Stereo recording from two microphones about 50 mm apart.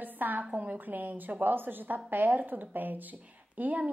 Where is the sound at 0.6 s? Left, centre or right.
Right.